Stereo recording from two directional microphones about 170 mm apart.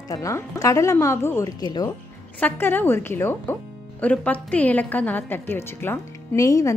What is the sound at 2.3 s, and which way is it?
A woman's voice, 10° left (ahead or behind).